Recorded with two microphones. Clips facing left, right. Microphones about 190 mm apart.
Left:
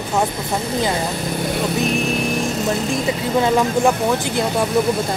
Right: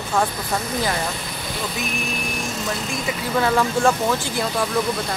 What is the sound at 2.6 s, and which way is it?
Speech, 30° left (ahead or behind).